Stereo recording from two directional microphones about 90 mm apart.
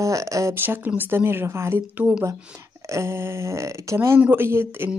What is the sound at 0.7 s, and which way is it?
Speech, 20° right (ahead or behind).